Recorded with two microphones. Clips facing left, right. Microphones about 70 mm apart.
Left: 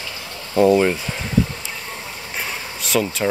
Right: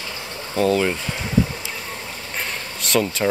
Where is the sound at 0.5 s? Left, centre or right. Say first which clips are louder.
Left 4 dB; centre.